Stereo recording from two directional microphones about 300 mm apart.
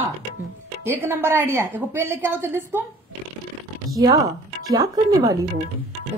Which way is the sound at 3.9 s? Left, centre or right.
Centre.